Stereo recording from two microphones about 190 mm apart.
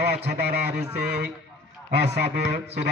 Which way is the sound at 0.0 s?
60° right (ahead or behind).